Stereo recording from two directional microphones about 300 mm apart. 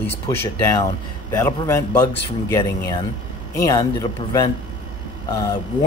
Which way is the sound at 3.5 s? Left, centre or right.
Centre.